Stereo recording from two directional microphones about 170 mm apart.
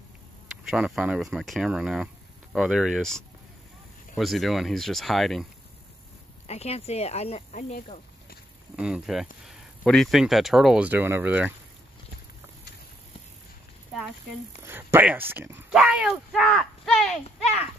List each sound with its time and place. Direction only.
0.7 s speech: 5° right (ahead or behind)
6.4 s speech: 40° left (ahead or behind)
8.7 s speech: 5° right (ahead or behind)
14.6 s speech: 15° right (ahead or behind); by 17.2 s centre (ahead or behind)